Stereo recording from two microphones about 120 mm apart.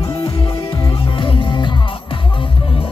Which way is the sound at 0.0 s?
45° left (ahead or behind).